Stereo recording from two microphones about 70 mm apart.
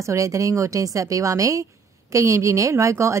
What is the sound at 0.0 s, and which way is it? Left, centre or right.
A woman's voice, right.